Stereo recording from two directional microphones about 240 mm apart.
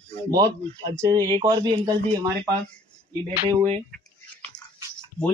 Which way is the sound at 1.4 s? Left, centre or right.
Centre.